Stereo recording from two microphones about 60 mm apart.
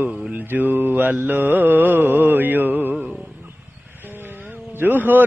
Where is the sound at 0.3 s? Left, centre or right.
Right.